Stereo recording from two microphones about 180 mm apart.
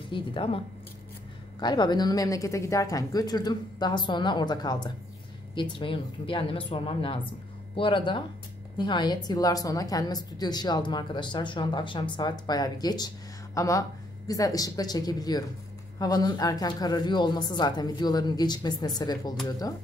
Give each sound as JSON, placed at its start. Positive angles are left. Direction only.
{"t": 0.1, "sound": "a woman's voice", "side_deg": 30}
{"t": 1.6, "sound": "a woman's voice", "side_deg": 25}